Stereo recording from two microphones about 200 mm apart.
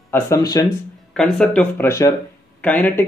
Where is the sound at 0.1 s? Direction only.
15° left (ahead or behind).